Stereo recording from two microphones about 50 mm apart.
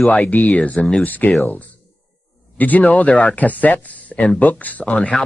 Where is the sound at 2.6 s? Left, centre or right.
Left.